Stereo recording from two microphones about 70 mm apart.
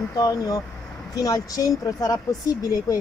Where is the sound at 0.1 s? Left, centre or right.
Left.